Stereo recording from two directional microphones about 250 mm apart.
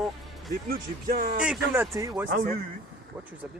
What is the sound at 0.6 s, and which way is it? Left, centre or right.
Speech, right.